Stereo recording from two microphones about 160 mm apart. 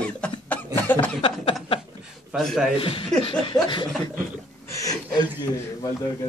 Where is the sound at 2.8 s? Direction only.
35° left (ahead or behind).